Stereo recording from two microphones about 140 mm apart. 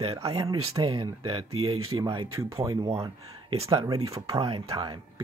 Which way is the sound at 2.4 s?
20° right (ahead or behind).